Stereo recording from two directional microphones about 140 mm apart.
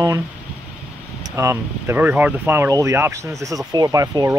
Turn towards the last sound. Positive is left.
turn(degrees=-25)  # may be behind; listen again after turning